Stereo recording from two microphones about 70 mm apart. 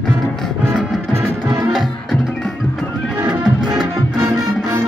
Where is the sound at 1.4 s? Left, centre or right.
Right.